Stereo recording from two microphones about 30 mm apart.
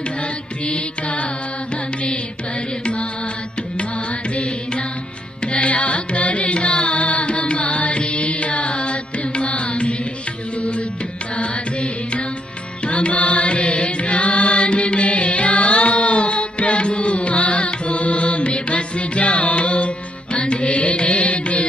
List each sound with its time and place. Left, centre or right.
0.7 s music: left
2.8 s music: left
5.5 s carnatic music: left
7.2 s music: left
11.3 s music: left